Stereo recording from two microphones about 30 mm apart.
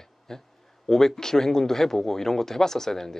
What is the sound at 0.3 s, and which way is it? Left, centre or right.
Speech, centre.